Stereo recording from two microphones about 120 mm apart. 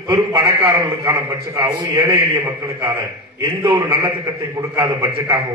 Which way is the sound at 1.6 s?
35° right (ahead or behind).